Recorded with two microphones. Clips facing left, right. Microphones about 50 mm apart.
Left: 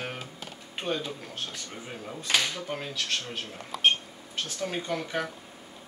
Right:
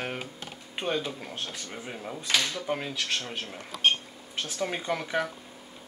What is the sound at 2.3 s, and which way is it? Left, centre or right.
Speech, centre.